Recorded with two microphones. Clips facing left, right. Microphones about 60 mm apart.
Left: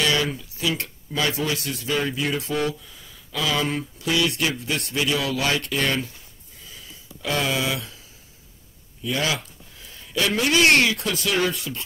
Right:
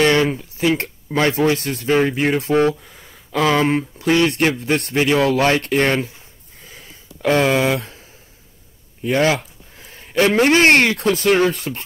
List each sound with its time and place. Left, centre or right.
0.0 s speech: right
6.6 s a sound: right
9.0 s a man's voice: right